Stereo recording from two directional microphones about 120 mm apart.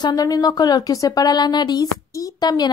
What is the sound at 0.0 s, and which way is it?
Speech, 30° left (ahead or behind).